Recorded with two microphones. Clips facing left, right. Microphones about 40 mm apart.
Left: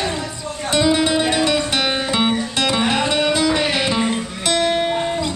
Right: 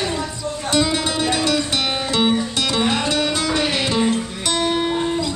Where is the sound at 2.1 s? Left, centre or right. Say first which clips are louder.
Right 4 dB; centre.